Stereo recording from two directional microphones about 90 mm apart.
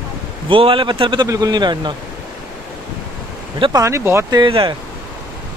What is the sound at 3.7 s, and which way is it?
Speech, 35° right (ahead or behind).